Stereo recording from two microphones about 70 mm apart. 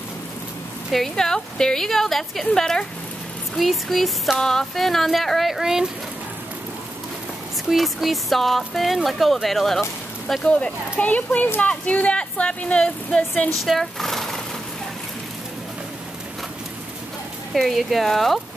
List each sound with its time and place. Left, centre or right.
0.9 s a woman's voice: centre
7.7 s speech: centre
10.4 s a woman's voice: centre
13.7 s speech: centre
17.6 s speech: centre